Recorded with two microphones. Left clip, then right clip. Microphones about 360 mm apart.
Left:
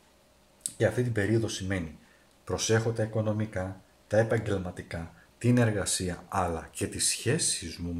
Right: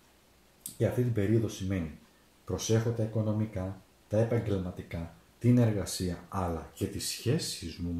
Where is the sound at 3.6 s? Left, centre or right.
Left.